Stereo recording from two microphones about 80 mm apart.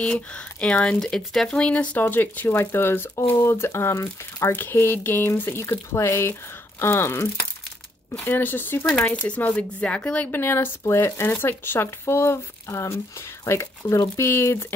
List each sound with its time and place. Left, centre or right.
0.0 s speech: centre; by 14.7 s left